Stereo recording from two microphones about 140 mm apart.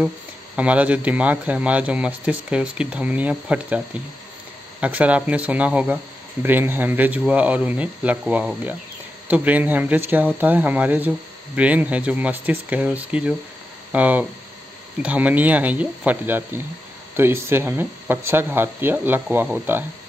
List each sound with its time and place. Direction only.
0.6 s speech: 10° right (ahead or behind)